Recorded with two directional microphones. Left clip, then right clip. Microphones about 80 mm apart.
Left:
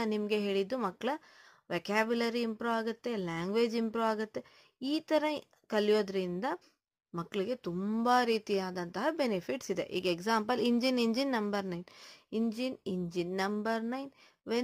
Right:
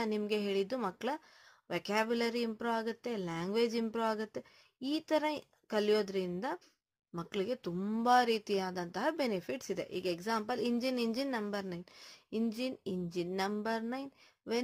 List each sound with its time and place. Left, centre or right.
0.3 s speech: left
11.8 s speech: left